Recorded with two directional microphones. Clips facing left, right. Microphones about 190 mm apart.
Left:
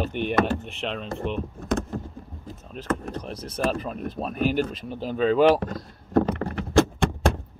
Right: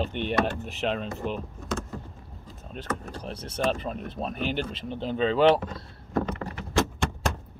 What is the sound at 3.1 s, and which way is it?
Speech, 30° right (ahead or behind).